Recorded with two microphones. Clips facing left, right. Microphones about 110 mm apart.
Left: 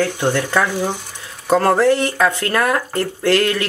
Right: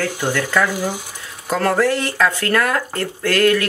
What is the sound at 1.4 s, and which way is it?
Speech, 25° left (ahead or behind).